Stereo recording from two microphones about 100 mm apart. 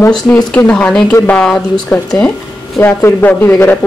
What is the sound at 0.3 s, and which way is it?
Speech, 15° left (ahead or behind).